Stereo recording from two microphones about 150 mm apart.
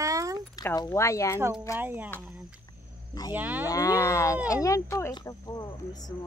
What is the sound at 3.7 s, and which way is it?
Speech, 20° left (ahead or behind).